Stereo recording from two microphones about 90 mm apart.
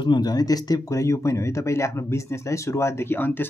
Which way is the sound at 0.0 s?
55° left (ahead or behind).